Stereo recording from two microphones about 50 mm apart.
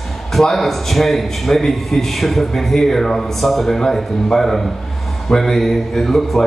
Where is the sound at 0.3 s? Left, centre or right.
Centre.